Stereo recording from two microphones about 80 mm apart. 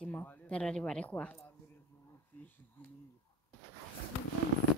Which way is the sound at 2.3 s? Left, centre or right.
Left.